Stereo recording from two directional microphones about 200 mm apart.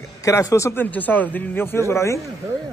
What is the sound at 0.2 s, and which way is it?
Speech, 15° left (ahead or behind).